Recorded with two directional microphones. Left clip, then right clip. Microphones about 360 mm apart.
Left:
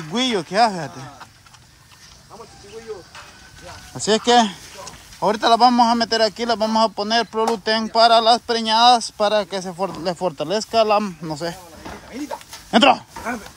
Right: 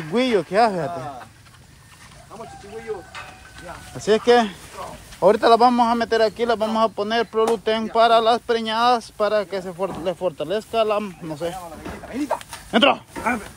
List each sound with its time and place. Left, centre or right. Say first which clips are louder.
0.1 s a man's voice: right 2 dB; centre
4.0 s a man's voice: left 1 dB; centre
12.7 s a man's voice: left 3 dB; centre